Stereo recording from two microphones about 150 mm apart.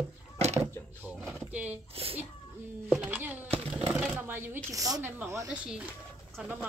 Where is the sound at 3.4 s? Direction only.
40° right (ahead or behind).